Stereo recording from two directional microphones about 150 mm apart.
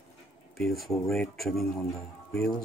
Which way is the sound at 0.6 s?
Centre (ahead or behind).